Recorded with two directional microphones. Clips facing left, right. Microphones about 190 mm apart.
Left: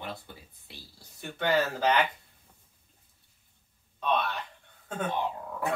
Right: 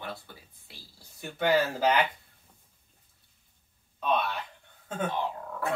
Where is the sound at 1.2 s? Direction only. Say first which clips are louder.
Right 2 dB; 10° right (ahead or behind).